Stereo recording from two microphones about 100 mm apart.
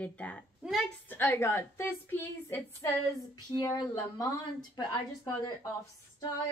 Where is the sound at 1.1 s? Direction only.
25° left (ahead or behind).